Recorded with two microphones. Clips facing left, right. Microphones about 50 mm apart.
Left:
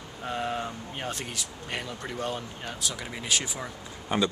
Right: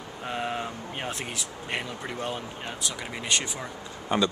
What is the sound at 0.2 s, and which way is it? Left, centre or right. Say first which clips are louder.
Vehicle: even; centre.